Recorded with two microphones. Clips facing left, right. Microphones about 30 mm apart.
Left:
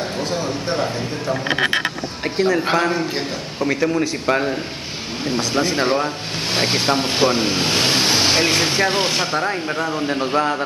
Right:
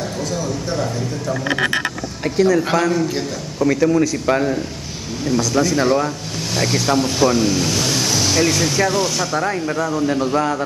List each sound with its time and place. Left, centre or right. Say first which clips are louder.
0.0 s a man's voice: left 1 dB; left
4.3 s a man's voice: even; centre
5.2 s a man's voice: right 3 dB; left